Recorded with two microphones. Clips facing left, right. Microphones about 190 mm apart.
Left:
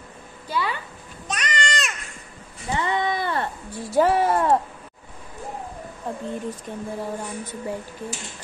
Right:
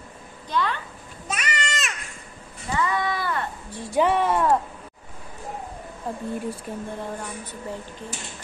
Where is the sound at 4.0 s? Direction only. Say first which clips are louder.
Left 2 dB; centre (ahead or behind).